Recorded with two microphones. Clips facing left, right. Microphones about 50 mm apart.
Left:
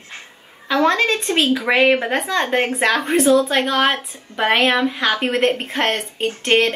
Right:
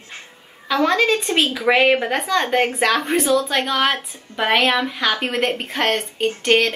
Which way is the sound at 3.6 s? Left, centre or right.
Centre.